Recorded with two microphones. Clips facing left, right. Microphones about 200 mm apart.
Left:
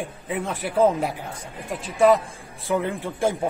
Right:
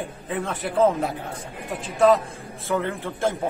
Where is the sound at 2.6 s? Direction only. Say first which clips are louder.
Left 1 dB; 15° left (ahead or behind).